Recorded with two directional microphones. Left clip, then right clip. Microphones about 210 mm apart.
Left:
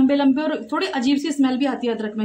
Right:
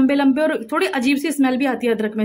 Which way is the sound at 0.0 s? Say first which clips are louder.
Right 2 dB; 20° right (ahead or behind).